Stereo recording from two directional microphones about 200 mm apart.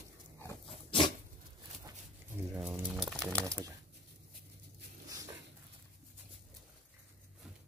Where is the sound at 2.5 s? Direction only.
5° right (ahead or behind).